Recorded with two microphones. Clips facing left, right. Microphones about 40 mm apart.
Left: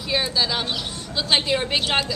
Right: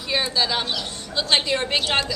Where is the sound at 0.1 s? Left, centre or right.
Centre.